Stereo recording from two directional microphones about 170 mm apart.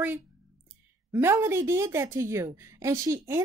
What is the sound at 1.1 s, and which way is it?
A woman's voice, 15° right (ahead or behind).